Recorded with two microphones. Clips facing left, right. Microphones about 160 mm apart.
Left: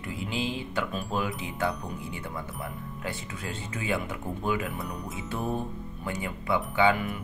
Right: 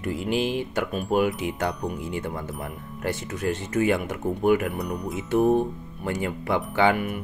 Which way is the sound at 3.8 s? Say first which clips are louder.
Right 7 dB; 70° right (ahead or behind).